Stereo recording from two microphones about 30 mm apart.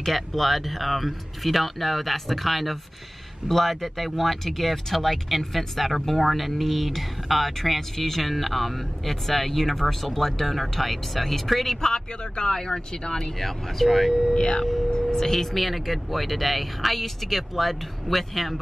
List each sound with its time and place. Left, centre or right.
0.0 s speech: centre
11.8 s speech: left
13.4 s speech: centre
13.8 s speech: centre
14.3 s speech: left; by 18.6 s centre